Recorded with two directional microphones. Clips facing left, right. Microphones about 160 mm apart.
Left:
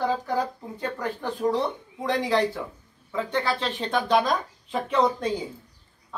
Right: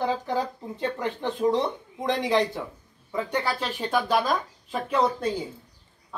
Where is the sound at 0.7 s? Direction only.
20° right (ahead or behind).